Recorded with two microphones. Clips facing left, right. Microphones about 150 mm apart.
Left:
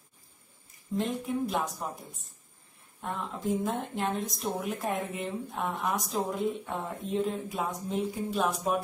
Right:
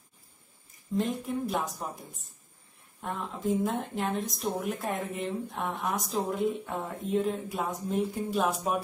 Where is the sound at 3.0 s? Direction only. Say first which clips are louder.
Right 1 dB; centre (ahead or behind).